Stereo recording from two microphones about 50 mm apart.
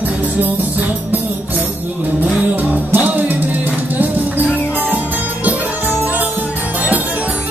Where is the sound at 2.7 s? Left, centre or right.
Right.